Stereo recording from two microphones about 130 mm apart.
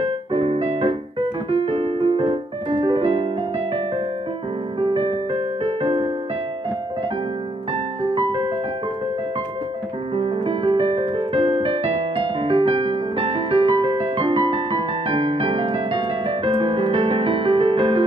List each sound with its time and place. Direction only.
0.0 s music: 45° right (ahead or behind)
1.5 s piano: 45° right (ahead or behind)
4.7 s music: 45° right (ahead or behind)
8.0 s music: 40° right (ahead or behind)
10.1 s piano: 45° right (ahead or behind)
16.4 s music: 40° right (ahead or behind)